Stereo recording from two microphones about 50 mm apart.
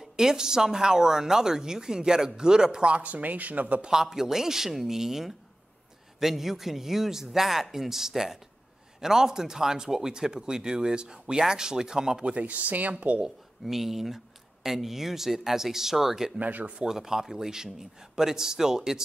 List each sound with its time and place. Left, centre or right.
0.1 s speech: centre; by 3.8 s right
3.8 s speech: centre; by 13.2 s right
13.2 s speech: centre
16.3 s speech: right
16.8 s speech: centre